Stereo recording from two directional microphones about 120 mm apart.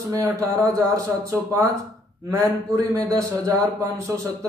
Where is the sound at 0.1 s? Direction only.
25° right (ahead or behind).